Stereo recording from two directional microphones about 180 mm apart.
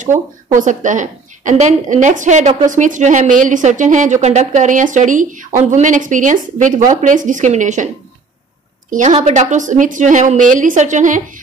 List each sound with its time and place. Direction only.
0.0 s a woman's voice: 45° right (ahead or behind)
8.9 s a woman's voice: 40° right (ahead or behind)